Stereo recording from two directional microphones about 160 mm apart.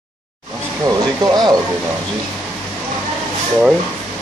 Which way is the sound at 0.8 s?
25° right (ahead or behind).